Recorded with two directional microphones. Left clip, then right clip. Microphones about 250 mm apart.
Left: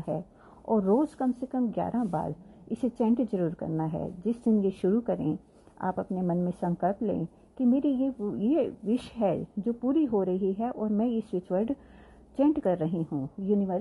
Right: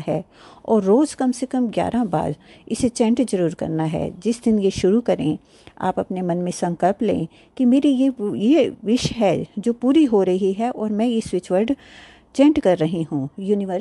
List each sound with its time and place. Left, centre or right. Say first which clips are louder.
0.7 s speech: right 9 dB; right